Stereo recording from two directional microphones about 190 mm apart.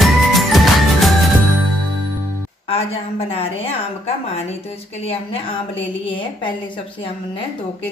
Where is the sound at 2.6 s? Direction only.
30° left (ahead or behind).